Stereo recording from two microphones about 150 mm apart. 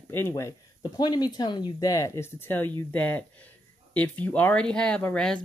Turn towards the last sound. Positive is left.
turn(degrees=5)  # may be behind; listen again after turning